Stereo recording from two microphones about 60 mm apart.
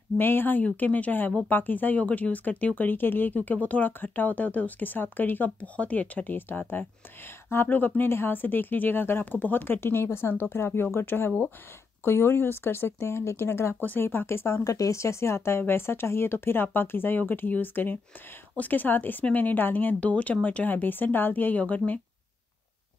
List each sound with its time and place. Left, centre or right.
0.2 s speech: left
7.6 s speech: left
14.6 s speech: left